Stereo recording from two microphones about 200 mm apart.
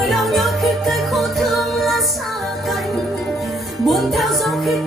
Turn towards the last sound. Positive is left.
turn(degrees=0)  # may be behind; listen again after turning